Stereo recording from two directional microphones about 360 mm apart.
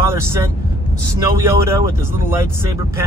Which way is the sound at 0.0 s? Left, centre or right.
Centre.